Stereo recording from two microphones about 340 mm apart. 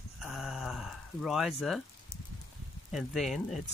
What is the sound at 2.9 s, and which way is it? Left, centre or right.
Speech, centre.